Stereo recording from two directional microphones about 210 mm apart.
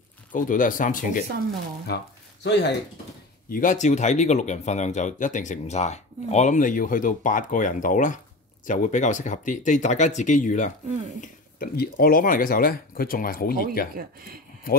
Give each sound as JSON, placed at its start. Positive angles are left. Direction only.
{"t": 0.3, "sound": "speech", "side_deg": 40}
{"t": 2.4, "sound": "speech", "side_deg": 55}
{"t": 3.4, "sound": "speech", "side_deg": 40}
{"t": 14.0, "sound": "speech", "side_deg": -45}